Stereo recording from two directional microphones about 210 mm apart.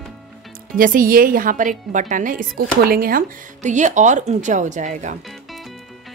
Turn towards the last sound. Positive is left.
turn(degrees=-35)  # may be behind; listen again after turning